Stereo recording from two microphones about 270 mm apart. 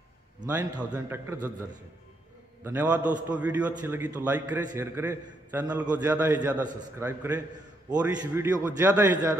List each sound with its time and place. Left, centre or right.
0.4 s a man's voice: centre
2.6 s a man's voice: centre
6.6 s a man's voice: right
7.0 s a man's voice: centre